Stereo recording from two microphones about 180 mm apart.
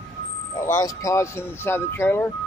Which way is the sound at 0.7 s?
20° left (ahead or behind).